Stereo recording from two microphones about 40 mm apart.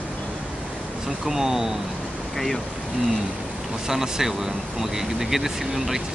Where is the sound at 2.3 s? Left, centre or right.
Centre.